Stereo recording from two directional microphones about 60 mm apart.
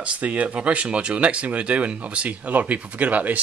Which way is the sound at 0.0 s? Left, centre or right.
Right.